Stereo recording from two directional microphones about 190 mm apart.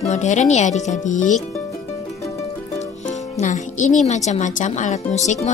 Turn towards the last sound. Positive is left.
turn(degrees=35)  # may be behind; listen again after turning